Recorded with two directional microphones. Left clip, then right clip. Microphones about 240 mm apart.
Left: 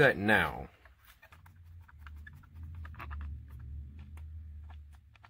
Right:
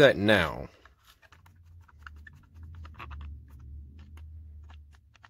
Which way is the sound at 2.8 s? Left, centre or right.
Centre.